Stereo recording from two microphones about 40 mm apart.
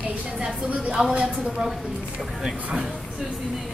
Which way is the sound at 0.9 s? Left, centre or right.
Right.